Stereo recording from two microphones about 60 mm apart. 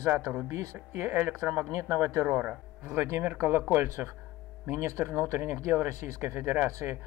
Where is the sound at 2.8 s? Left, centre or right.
Right.